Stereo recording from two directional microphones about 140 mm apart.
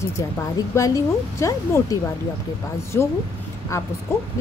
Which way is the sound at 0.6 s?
25° left (ahead or behind).